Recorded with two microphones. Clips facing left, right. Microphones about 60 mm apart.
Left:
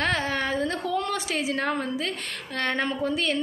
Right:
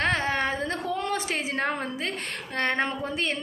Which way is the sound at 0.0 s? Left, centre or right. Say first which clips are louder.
Right 1 dB; right.